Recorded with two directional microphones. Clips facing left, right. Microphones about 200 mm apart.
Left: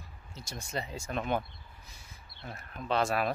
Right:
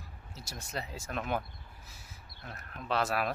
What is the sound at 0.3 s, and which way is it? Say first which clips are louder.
Speech: left 3 dB; 5° right (ahead or behind).